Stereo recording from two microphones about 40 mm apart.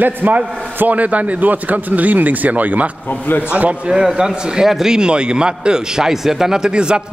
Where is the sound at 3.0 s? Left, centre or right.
Left.